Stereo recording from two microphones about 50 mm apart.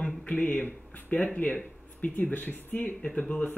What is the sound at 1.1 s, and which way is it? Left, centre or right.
Speech, left.